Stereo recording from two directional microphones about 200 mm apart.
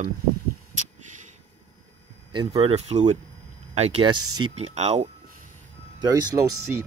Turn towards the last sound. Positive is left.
turn(degrees=-15)  # may be behind; listen again after turning